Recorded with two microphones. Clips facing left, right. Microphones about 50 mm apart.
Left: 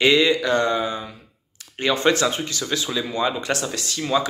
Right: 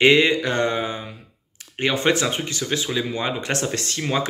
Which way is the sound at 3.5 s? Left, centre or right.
Right.